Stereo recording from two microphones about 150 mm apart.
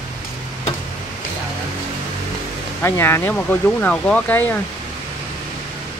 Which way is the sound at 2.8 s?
15° left (ahead or behind).